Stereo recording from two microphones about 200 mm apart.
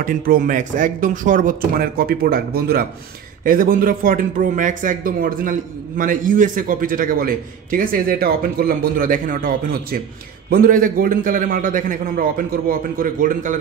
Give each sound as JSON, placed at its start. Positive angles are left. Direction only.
{"t": 0.0, "sound": "speech", "side_deg": -45}